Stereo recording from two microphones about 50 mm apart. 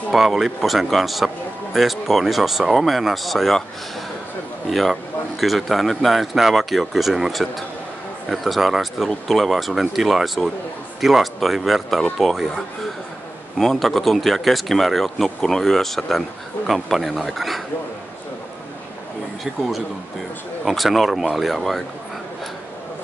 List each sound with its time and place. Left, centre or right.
0.1 s speech: centre
4.6 s speech: centre
20.6 s speech: centre